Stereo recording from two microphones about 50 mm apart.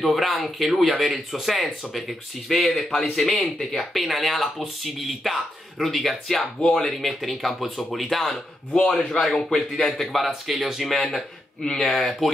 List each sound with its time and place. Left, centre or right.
0.0 s speech: centre
6.9 s speech: centre
8.7 s speech: centre